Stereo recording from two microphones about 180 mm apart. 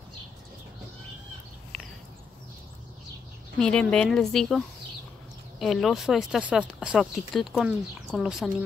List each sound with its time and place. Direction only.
3.5 s speech: 5° left (ahead or behind)